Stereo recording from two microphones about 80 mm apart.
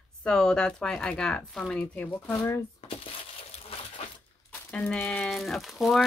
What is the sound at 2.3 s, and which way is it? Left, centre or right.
Speech, left.